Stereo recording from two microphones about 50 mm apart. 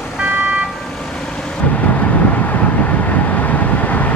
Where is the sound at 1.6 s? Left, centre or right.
Left.